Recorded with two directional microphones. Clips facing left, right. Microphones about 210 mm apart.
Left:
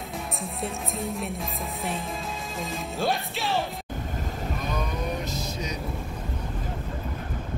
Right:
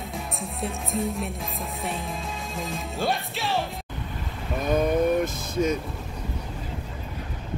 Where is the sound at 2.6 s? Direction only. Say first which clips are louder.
Even; centre (ahead or behind).